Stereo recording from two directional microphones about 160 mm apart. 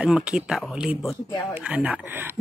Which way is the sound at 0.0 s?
5° right (ahead or behind).